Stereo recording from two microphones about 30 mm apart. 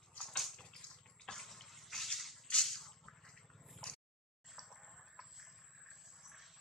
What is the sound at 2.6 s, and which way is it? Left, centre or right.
Drip, centre.